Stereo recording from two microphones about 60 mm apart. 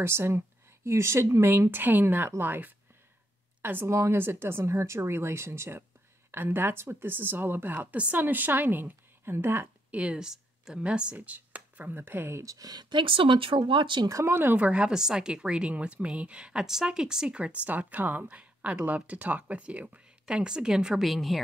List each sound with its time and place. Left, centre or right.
0.0 s speech: right
3.9 s speech: right
9.8 s speech: right
10.2 s a woman's voice: centre
11.1 s speech: right
12.4 s speech: right
14.0 s speech: right
14.3 s speech: right
14.6 s a woman's voice: centre
17.4 s a woman's voice: right
21.0 s a woman's voice: centre